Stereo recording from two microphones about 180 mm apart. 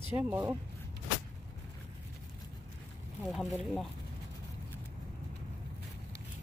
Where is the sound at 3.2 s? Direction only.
Centre (ahead or behind).